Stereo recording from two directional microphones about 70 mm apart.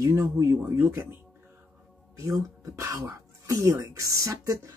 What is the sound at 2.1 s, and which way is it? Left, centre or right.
Speech, right.